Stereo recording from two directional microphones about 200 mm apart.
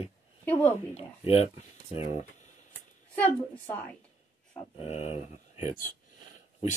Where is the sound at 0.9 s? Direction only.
30° left (ahead or behind).